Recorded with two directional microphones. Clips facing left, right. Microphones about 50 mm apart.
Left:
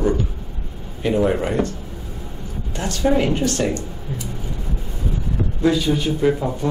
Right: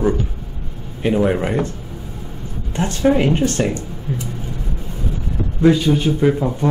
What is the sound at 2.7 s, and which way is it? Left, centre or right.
Speech, right.